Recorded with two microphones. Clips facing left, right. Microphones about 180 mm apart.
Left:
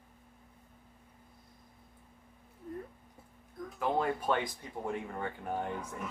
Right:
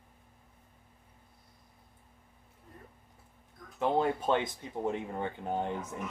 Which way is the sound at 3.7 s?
25° right (ahead or behind).